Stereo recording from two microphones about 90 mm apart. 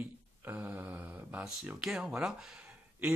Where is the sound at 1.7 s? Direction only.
5° right (ahead or behind).